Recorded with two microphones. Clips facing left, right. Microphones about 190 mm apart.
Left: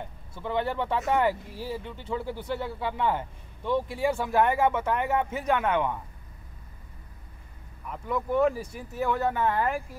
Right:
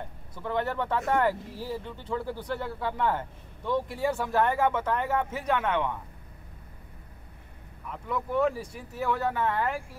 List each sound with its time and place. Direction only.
0.3 s speech: 20° left (ahead or behind)
2.6 s speech: 15° left (ahead or behind)
4.0 s speech: 10° left (ahead or behind)
7.9 s speech: 5° left (ahead or behind)